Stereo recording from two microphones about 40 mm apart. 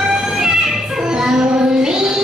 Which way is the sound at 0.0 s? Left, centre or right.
Centre.